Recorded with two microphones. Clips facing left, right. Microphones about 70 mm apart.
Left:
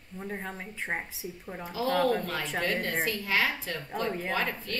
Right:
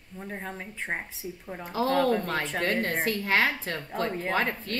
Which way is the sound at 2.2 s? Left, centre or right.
Right.